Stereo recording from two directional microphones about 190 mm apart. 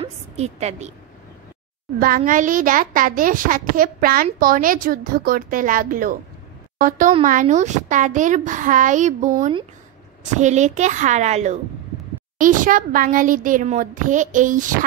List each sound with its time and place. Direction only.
0.0 s a woman's voice: 35° right (ahead or behind)
2.0 s a child's voice: 45° right (ahead or behind)
10.3 s a woman's voice: 40° right (ahead or behind)